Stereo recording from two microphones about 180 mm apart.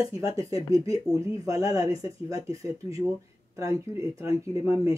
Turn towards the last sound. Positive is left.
turn(degrees=-20)  # may be behind; listen again after turning